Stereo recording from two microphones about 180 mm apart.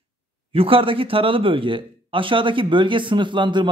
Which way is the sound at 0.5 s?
30° right (ahead or behind).